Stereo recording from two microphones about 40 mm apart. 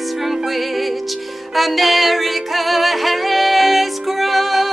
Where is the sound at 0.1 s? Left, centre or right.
Centre.